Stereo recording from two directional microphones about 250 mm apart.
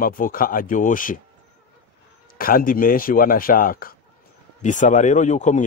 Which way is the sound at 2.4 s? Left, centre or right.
Left.